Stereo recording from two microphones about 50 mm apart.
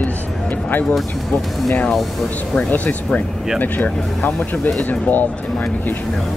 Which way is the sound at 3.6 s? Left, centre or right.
Left.